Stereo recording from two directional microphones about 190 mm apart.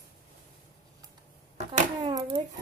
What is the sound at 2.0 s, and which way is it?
Speech, 20° right (ahead or behind).